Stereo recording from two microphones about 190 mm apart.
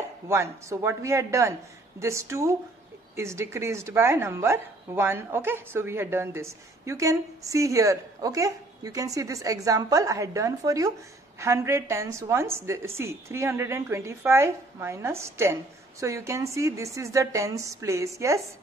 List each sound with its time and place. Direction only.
0.3 s a woman's voice: 15° right (ahead or behind)